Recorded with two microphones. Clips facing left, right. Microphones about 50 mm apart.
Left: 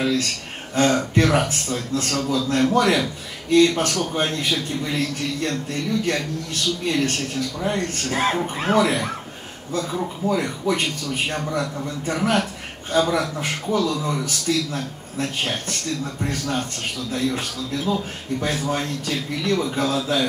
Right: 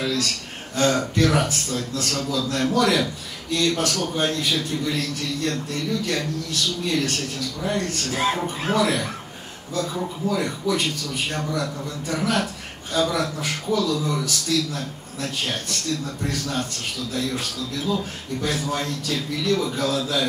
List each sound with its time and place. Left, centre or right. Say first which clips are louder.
0.0 s a man's voice: left 3 dB; left
10.2 s a man's voice: left 2 dB; left
12.9 s a man's voice: left 2 dB; left